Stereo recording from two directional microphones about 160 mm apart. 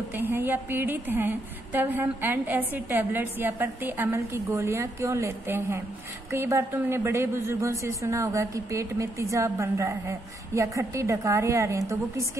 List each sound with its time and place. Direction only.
0.1 s a woman's voice: 15° right (ahead or behind)